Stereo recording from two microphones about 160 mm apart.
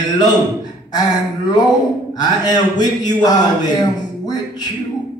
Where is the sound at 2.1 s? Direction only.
25° left (ahead or behind).